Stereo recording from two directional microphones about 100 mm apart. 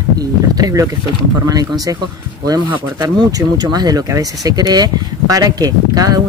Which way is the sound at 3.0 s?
40° right (ahead or behind).